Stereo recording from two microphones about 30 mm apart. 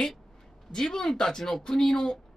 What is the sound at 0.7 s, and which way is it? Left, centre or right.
Speech, centre.